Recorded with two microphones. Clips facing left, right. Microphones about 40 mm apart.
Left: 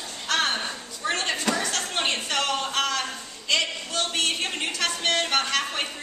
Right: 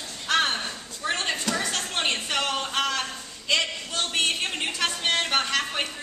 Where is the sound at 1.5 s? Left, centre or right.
Left.